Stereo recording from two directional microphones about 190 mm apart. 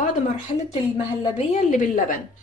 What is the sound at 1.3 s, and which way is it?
Speech, 40° left (ahead or behind).